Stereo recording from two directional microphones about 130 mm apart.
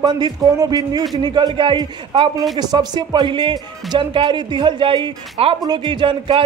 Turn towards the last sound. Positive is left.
turn(degrees=-40)  # may be behind; listen again after turning